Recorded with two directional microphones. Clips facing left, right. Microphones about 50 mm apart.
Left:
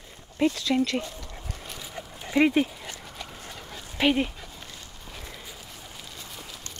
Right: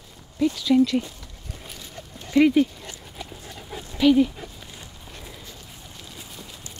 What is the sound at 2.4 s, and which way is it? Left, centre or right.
Speech, left.